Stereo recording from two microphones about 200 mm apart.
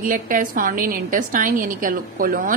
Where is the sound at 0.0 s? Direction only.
40° right (ahead or behind).